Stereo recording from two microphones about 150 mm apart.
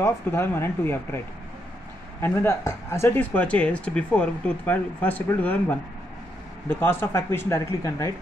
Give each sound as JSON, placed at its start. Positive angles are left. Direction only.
{"t": 0.0, "sound": "speech", "side_deg": 15}
{"t": 2.2, "sound": "speech", "side_deg": 15}